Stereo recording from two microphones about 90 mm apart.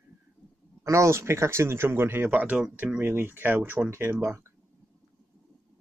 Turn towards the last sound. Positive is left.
turn(degrees=-30)  # may be behind; listen again after turning